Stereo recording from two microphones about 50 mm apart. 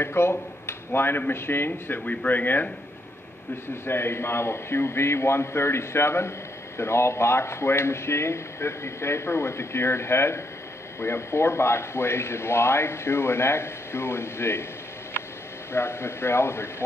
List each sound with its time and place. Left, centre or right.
0.0 s a man's voice: left
1.7 s speech: left
3.8 s speech: left
15.7 s speech: left